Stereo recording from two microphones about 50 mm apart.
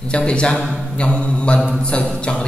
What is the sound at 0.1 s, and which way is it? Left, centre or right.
Mantra, left.